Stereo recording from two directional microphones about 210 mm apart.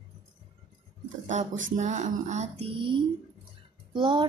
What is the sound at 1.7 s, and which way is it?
Music, 35° right (ahead or behind).